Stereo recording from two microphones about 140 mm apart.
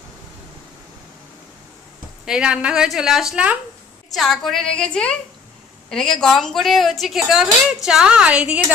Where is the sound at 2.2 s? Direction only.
5° right (ahead or behind).